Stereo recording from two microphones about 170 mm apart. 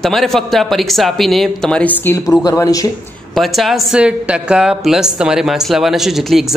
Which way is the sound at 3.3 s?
Centre (ahead or behind).